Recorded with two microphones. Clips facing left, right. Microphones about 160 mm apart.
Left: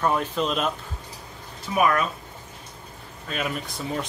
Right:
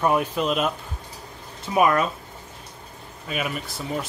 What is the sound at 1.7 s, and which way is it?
Speech, 20° right (ahead or behind).